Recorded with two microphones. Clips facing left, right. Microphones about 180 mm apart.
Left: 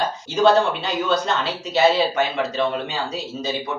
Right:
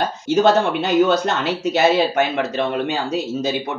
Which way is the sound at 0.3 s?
55° right (ahead or behind).